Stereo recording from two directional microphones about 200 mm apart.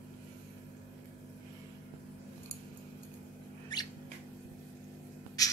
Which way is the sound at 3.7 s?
20° left (ahead or behind).